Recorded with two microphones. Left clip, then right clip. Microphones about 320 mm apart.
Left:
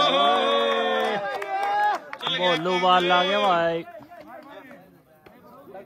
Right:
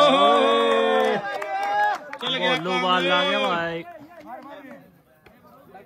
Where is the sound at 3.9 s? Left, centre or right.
Centre.